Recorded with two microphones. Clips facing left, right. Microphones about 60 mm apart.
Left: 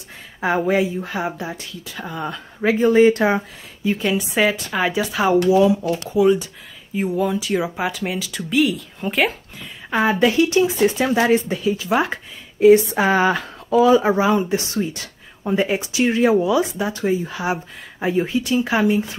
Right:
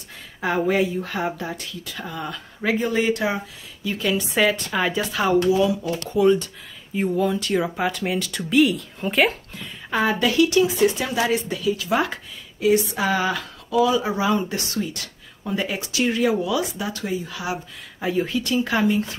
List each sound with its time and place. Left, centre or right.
0.7 s a woman's voice: centre
2.0 s speech: left
3.8 s speech: left
4.2 s a woman's voice: centre
5.6 s speech: left
6.0 s a woman's voice: centre
9.8 s speech: centre; by 14.2 s left
14.2 s speech: centre
18.2 s a woman's voice: centre